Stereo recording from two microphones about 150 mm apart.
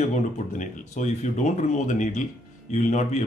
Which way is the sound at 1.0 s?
55° left (ahead or behind).